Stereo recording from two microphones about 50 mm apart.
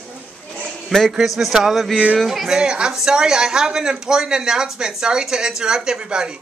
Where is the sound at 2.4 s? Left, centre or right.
Centre.